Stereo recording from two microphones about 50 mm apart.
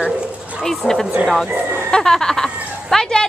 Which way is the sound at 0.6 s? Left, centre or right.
Centre.